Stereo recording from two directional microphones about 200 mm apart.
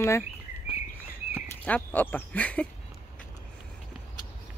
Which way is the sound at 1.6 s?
10° left (ahead or behind).